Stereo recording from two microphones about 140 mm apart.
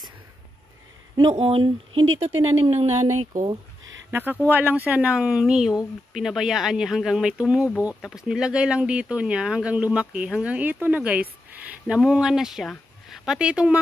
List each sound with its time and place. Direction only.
1.1 s speech: 35° right (ahead or behind); by 3.4 s 55° right (ahead or behind)
4.1 s speech: 15° right (ahead or behind)